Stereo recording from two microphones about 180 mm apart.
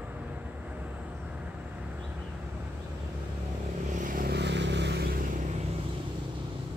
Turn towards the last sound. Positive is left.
turn(degrees=-65)  # may be behind; listen again after turning